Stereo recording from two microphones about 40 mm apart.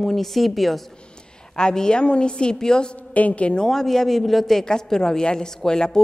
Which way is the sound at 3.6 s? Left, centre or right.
Centre.